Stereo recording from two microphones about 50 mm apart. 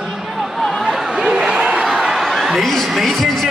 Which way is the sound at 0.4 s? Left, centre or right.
Centre.